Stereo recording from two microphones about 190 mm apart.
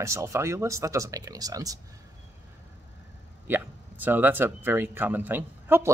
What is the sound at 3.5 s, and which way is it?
Speech, 10° right (ahead or behind).